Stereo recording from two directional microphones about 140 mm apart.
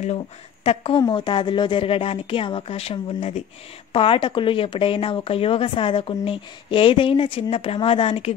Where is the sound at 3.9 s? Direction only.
40° left (ahead or behind).